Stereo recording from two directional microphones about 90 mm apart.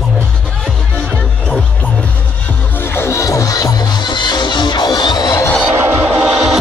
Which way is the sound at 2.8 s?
25° left (ahead or behind).